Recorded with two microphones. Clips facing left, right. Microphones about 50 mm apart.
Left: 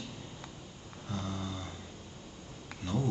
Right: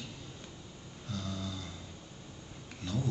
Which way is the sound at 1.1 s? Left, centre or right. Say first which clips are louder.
Left 2 dB; left.